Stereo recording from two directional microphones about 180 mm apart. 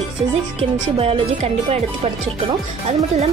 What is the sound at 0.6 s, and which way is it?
A woman's voice, 35° right (ahead or behind).